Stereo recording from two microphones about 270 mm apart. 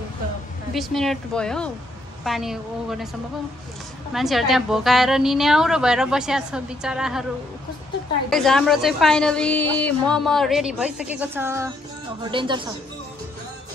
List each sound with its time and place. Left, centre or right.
0.7 s a woman's voice: centre
4.1 s a woman's voice: centre
8.3 s a woman's voice: centre